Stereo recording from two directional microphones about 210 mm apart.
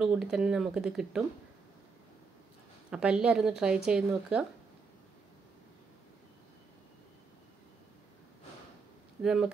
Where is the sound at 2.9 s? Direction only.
5° right (ahead or behind).